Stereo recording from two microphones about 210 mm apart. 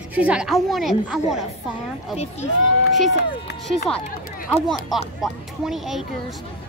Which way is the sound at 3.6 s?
5° left (ahead or behind).